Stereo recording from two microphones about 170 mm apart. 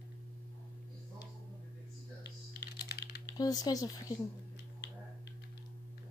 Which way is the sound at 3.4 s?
20° left (ahead or behind).